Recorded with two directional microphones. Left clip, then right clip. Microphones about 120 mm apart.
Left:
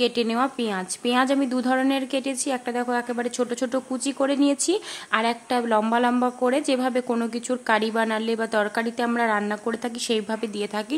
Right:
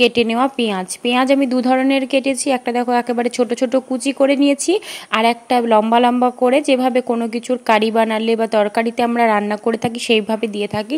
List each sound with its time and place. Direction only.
0.0 s a woman's voice: 35° right (ahead or behind)
7.1 s speech: 25° right (ahead or behind)
7.6 s a woman's voice: 35° right (ahead or behind)